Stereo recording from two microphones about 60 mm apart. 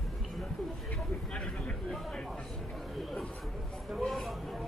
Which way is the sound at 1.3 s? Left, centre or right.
Left.